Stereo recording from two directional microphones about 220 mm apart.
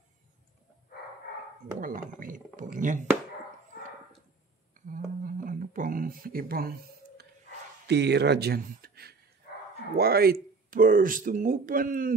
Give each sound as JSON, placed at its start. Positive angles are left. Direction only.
{"t": 1.8, "sound": "speech", "side_deg": -40}
{"t": 4.8, "sound": "a sound", "side_deg": -40}
{"t": 7.8, "sound": "speech", "side_deg": -50}